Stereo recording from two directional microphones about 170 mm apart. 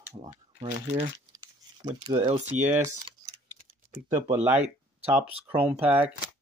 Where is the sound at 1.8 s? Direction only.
25° right (ahead or behind).